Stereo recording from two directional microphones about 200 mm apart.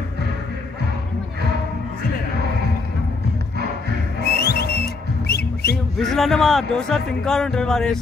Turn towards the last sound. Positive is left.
turn(degrees=0)  # may be behind; listen again after turning